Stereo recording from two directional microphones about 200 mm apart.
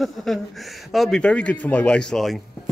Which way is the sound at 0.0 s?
Centre (ahead or behind).